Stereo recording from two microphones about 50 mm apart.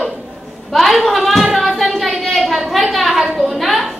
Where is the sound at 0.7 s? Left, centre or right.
Centre.